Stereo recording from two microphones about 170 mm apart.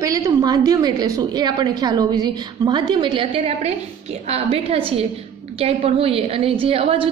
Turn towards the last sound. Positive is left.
turn(degrees=-35)  # may be behind; listen again after turning